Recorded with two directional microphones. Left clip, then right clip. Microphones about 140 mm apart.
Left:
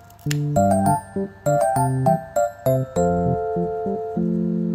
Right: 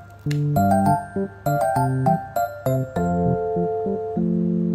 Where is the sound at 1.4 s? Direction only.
Centre (ahead or behind).